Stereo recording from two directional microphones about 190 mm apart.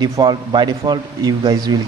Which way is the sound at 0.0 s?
25° right (ahead or behind).